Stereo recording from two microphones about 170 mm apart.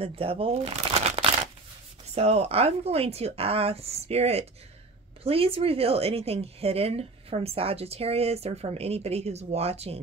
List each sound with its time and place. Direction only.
0.0 s shuffling cards: 35° right (ahead or behind)
2.1 s a woman's voice: 35° right (ahead or behind)